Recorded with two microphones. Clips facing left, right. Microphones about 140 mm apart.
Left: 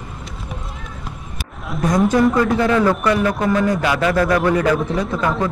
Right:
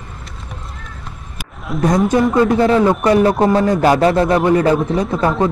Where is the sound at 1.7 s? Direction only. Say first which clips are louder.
Right 5 dB; centre (ahead or behind).